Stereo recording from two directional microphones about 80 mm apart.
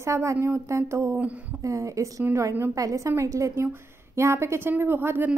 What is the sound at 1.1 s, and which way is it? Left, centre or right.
Speech, centre.